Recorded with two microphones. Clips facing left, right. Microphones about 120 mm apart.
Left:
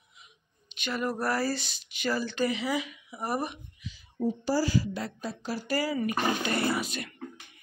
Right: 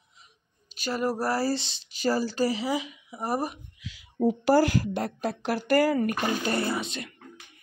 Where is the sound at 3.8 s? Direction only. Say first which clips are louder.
Right 1 dB; 90° right.